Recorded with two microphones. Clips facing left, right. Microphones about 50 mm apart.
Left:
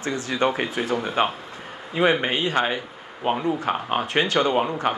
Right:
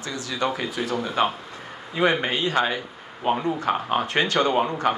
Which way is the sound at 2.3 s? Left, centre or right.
Left.